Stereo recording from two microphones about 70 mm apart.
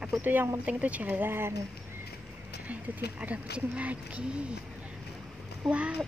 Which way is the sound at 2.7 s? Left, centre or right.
Centre.